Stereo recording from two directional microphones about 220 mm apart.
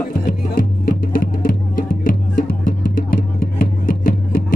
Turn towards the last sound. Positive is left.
turn(degrees=40)  # may be behind; listen again after turning